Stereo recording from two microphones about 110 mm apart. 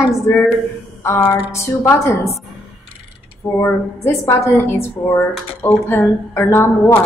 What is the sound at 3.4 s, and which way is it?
A woman's voice, 25° left (ahead or behind).